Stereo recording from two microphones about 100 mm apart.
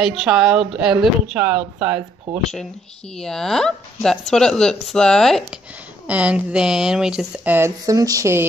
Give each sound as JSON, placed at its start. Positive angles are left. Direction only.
{"t": 0.0, "sound": "a woman's voice", "side_deg": -5}
{"t": 3.2, "sound": "speech", "side_deg": 5}
{"t": 6.0, "sound": "a woman's voice", "side_deg": -10}
{"t": 7.4, "sound": "speech", "side_deg": -20}
{"t": 7.8, "sound": "speech", "side_deg": -35}